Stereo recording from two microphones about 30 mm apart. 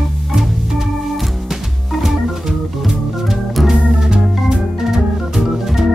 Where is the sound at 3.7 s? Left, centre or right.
Right.